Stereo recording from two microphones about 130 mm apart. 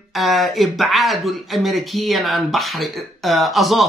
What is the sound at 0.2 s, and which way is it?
A man's voice, centre (ahead or behind).